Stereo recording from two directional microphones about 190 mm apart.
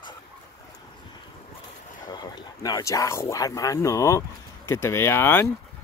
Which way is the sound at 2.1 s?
20° left (ahead or behind).